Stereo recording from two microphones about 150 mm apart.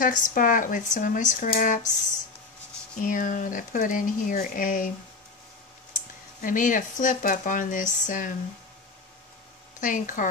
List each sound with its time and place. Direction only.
0.0 s speech: 65° left (ahead or behind)
3.0 s speech: 60° left (ahead or behind)
6.4 s speech: 60° left (ahead or behind)
9.8 s speech: 60° left (ahead or behind)